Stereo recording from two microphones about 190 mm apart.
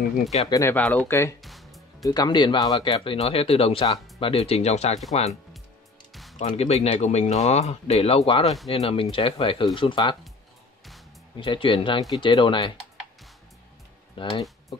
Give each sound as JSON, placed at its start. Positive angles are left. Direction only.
{"t": 0.5, "sound": "speech", "side_deg": 15}
{"t": 1.4, "sound": "music", "side_deg": 0}
{"t": 2.0, "sound": "speech", "side_deg": 20}
{"t": 11.3, "sound": "speech", "side_deg": 25}
{"t": 14.1, "sound": "speech", "side_deg": 20}